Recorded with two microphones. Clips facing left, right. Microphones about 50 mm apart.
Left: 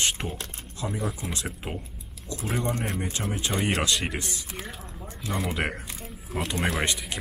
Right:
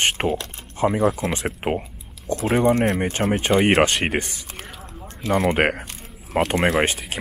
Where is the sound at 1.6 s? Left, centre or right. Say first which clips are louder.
Right 15 dB; right.